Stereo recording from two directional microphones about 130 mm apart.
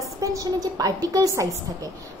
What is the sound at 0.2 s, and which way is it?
A woman's voice, 25° right (ahead or behind).